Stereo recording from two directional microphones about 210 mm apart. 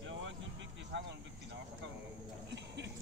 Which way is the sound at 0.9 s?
55° right (ahead or behind).